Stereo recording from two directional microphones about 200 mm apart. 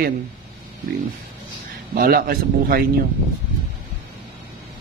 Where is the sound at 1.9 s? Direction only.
45° right (ahead or behind).